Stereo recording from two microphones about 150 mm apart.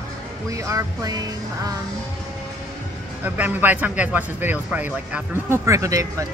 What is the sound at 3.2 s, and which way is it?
Speech, 10° right (ahead or behind).